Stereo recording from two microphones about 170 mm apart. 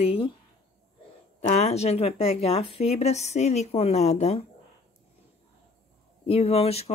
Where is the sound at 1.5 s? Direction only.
40° left (ahead or behind).